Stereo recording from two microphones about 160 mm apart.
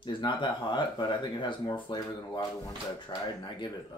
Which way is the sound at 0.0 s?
30° left (ahead or behind).